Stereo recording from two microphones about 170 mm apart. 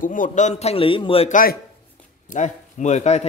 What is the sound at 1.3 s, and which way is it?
A man's voice, 55° left (ahead or behind).